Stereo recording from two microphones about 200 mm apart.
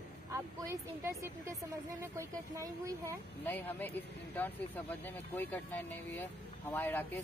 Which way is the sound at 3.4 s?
10° left (ahead or behind).